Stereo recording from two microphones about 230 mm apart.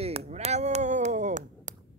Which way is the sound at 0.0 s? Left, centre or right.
Right.